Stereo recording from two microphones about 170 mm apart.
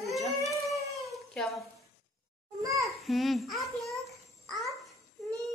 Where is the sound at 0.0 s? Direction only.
Centre (ahead or behind).